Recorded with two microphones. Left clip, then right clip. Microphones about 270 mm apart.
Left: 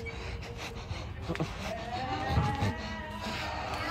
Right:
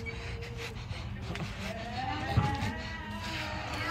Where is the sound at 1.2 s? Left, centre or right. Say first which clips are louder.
Left 4 dB; left.